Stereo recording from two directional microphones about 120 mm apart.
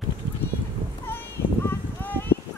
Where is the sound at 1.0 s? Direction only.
20° left (ahead or behind).